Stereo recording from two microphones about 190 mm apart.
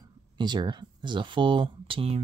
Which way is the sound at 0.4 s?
25° right (ahead or behind).